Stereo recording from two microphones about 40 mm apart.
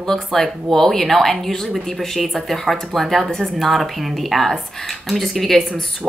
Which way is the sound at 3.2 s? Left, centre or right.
Left.